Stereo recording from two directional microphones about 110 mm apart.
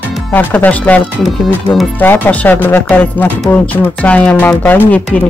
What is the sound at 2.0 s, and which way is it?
A woman's voice, 15° left (ahead or behind).